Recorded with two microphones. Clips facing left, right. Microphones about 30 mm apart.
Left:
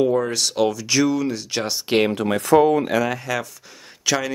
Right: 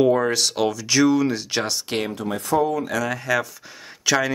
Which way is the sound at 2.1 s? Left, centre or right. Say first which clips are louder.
Left 4 dB; left.